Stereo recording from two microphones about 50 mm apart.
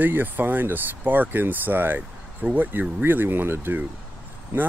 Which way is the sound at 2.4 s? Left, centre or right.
Right.